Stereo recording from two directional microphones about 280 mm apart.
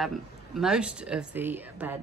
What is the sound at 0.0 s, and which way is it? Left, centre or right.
A woman's voice, centre.